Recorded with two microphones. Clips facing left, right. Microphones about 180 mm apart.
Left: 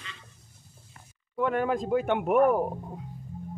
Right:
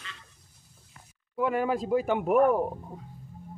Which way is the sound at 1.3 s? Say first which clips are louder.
Even; 5° right (ahead or behind).